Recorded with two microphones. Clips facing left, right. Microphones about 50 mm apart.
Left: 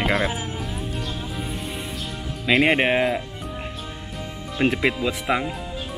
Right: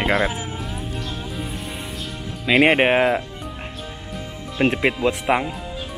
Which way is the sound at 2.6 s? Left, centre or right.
Centre.